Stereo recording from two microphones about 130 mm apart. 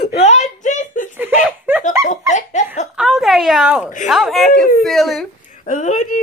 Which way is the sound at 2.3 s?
65° left (ahead or behind).